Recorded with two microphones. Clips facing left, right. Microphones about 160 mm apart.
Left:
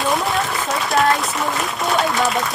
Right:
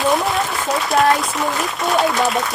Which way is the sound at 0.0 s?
Centre (ahead or behind).